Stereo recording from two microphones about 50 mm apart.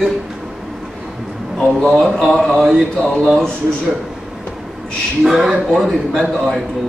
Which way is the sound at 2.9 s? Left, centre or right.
Left.